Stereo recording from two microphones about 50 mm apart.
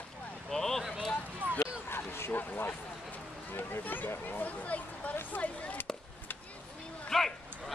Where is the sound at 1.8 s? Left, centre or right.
Left.